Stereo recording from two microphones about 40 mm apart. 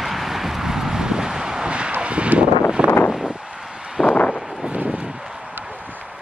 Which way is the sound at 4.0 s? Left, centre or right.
Centre.